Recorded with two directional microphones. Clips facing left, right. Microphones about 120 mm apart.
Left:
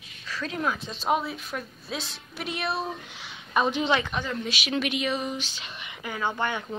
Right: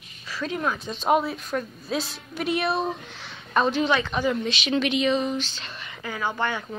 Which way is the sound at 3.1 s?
10° left (ahead or behind).